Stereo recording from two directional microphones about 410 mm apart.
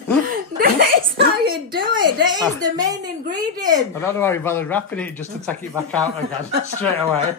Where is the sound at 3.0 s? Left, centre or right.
Right.